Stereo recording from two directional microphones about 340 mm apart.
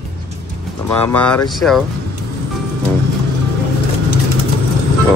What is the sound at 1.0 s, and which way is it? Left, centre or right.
Speech, centre.